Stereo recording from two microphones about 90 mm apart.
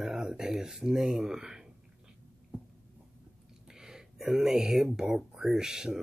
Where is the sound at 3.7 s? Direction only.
5° right (ahead or behind).